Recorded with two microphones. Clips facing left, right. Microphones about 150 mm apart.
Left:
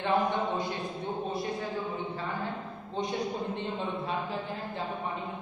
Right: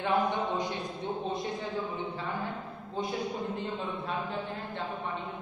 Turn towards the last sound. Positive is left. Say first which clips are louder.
# left 1 dB
turn(degrees=-5)  # may be behind; listen again after turning